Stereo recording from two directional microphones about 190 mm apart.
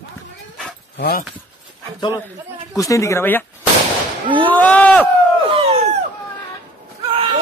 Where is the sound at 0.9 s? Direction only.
55° left (ahead or behind).